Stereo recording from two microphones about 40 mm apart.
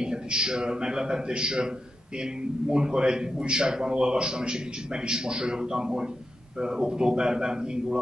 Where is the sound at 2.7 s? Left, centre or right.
Right.